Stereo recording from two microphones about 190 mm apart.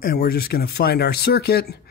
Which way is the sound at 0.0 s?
50° left (ahead or behind).